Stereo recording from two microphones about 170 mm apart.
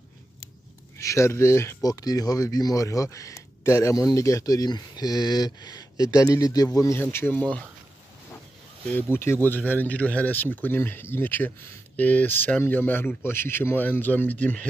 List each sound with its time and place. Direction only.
0.9 s speech: 15° left (ahead or behind)
8.8 s speech: 10° left (ahead or behind)